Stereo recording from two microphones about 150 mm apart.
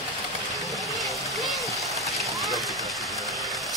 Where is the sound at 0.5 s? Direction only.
Centre (ahead or behind).